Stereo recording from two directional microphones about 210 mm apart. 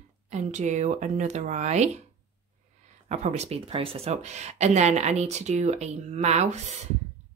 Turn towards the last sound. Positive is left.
turn(degrees=-35)  # may be behind; listen again after turning